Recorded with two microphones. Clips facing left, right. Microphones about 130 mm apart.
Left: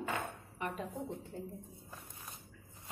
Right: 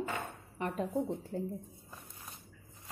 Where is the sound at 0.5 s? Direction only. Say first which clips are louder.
Right 4 dB; 35° right (ahead or behind).